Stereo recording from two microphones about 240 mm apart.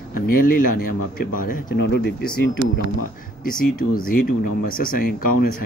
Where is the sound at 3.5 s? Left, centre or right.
Left.